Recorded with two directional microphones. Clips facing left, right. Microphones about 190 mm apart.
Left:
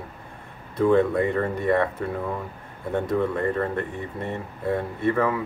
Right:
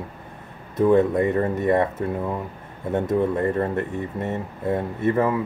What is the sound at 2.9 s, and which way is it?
Speech, 20° right (ahead or behind).